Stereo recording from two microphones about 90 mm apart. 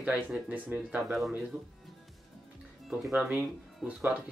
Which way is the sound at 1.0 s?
Centre (ahead or behind).